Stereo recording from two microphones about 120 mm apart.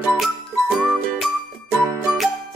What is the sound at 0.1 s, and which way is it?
Music, centre (ahead or behind).